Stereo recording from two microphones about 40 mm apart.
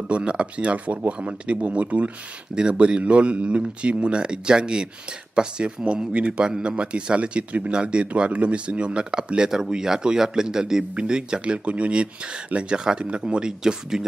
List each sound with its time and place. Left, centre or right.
0.1 s a man's voice: right
6.1 s a man's voice: right